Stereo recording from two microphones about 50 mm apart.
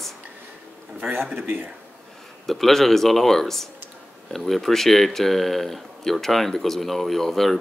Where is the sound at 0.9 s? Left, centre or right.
Right.